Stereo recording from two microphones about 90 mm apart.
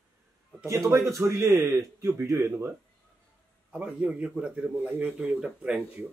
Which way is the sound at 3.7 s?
15° right (ahead or behind).